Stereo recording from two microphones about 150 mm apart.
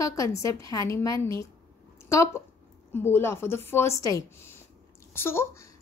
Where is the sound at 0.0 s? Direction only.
20° left (ahead or behind).